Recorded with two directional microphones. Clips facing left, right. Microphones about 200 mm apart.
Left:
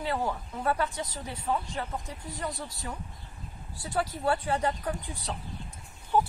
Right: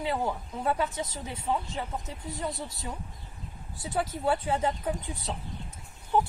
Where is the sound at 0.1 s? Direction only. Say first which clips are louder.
Even; centre (ahead or behind).